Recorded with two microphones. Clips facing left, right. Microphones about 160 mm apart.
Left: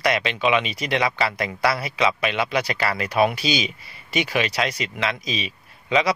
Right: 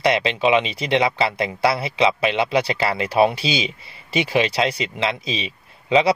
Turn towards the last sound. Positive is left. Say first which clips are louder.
# right 4 dB
turn(degrees=-30)  # may be behind; listen again after turning